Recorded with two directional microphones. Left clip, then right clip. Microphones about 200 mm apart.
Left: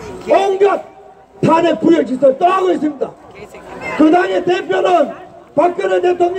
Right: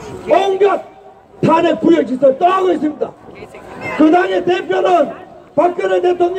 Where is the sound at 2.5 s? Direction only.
5° right (ahead or behind).